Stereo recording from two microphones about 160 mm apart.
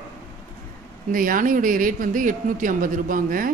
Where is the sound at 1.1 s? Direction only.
60° right (ahead or behind).